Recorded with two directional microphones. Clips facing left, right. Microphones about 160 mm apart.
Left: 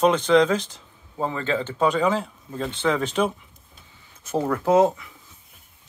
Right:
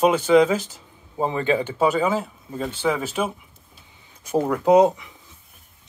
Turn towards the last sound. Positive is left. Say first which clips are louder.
# right 3 dB
turn(degrees=-15)  # may be behind; listen again after turning